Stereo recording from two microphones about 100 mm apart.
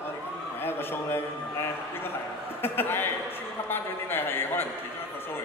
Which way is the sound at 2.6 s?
20° left (ahead or behind).